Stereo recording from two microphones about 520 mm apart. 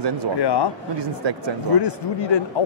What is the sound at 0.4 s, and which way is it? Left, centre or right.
Speech, left.